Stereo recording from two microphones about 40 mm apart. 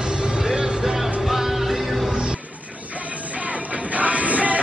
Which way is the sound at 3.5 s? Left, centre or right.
Right.